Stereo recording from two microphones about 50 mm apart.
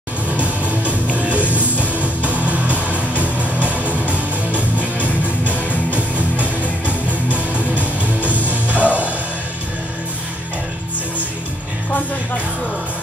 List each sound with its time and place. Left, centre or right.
0.4 s music: right
6.4 s music: right